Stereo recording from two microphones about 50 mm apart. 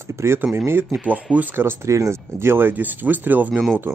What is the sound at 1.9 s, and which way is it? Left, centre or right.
Speech, right.